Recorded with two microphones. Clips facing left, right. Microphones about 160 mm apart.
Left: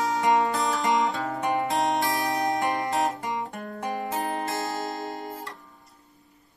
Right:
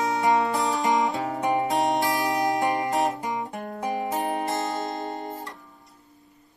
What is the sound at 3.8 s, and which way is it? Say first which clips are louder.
Music: right 2 dB; 20° right (ahead or behind).